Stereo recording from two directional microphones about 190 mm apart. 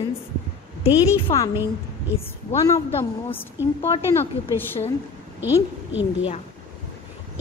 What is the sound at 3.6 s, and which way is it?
Speech, 10° right (ahead or behind).